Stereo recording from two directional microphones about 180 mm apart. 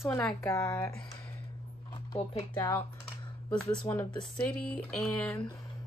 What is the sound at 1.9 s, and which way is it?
Speech, 20° left (ahead or behind).